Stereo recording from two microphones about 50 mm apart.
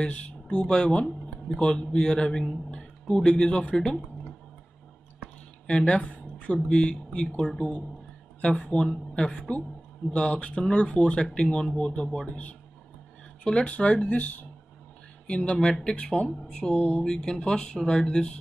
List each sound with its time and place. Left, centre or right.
0.0 s speech: left
2.7 s a sound: left
3.3 s speech: centre
5.7 s speech: centre